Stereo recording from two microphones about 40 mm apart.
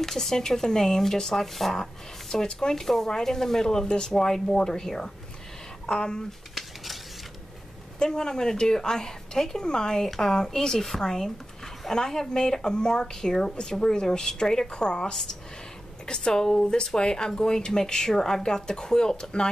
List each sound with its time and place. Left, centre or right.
0.0 s a woman's voice: centre
6.5 s a sound: centre
8.0 s a woman's voice: centre